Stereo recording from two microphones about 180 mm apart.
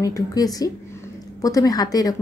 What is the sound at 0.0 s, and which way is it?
A woman's voice, 20° left (ahead or behind).